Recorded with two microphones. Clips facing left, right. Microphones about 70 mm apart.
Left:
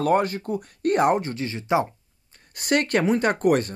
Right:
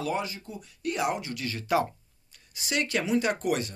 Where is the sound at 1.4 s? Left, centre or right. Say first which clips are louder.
Left 4 dB; left.